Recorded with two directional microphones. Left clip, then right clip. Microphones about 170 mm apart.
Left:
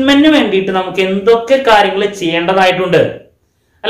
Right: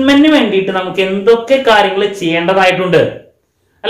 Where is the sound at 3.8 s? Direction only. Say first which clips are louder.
Right 1 dB; 20° left (ahead or behind).